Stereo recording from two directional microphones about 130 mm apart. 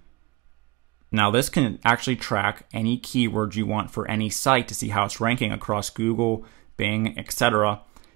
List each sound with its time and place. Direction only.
1.1 s speech: 40° right (ahead or behind)
1.8 s speech: 15° right (ahead or behind)